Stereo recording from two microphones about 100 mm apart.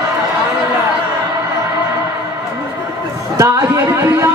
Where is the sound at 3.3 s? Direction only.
30° right (ahead or behind).